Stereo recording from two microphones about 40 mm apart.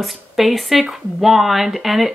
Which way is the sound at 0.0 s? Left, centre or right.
Centre.